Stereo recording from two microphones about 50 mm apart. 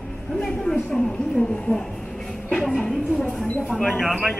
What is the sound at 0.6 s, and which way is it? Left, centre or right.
Speech, centre.